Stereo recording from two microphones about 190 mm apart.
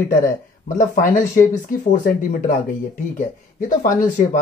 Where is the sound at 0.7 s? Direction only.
45° left (ahead or behind).